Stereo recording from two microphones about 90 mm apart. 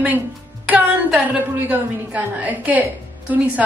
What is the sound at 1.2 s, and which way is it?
A woman's voice, 20° right (ahead or behind).